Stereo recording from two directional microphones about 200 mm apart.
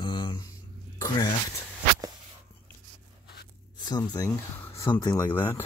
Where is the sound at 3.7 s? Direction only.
20° left (ahead or behind).